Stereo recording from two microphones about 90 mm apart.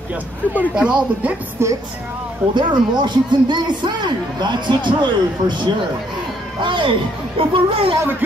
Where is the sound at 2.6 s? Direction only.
60° right (ahead or behind).